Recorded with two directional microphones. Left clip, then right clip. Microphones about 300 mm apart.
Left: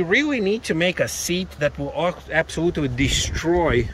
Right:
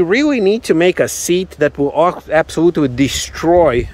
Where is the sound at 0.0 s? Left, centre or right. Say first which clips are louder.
Right 7 dB; centre.